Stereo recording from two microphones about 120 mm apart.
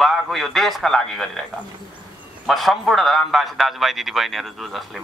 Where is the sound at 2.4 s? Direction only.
Centre (ahead or behind).